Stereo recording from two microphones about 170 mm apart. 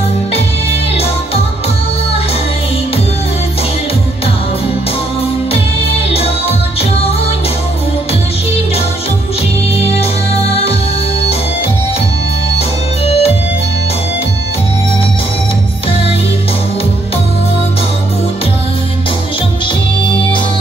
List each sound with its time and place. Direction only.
5.5 s music: 35° left (ahead or behind)
12.5 s organ: 35° left (ahead or behind)